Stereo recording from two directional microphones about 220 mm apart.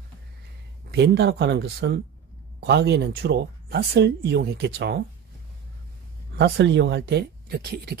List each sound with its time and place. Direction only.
0.9 s speech: 50° right (ahead or behind)
6.3 s speech: 50° right (ahead or behind)